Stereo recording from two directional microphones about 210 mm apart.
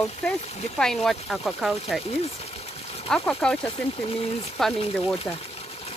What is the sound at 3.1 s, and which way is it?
Speech, 5° left (ahead or behind).